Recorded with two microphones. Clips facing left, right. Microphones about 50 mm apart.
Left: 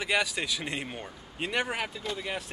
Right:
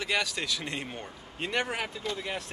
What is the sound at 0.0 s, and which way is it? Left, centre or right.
A man's voice, centre.